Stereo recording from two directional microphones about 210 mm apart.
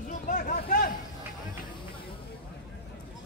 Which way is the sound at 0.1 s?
35° left (ahead or behind).